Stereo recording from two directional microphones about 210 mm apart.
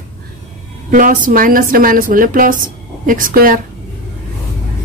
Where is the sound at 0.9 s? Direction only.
40° right (ahead or behind).